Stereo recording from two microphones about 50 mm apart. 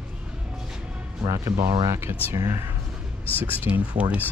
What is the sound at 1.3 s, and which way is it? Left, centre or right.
Speech, right.